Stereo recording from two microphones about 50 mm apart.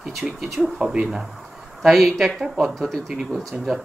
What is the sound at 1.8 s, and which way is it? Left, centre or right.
Speech, centre.